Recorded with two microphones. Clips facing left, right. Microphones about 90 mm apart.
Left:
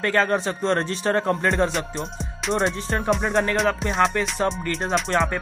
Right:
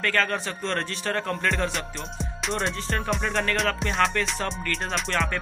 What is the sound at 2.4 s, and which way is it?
Music, centre (ahead or behind).